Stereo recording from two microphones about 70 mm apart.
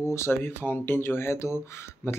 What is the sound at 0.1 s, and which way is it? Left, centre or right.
Speech, left.